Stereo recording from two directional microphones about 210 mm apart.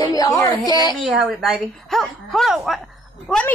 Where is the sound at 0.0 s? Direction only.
15° left (ahead or behind).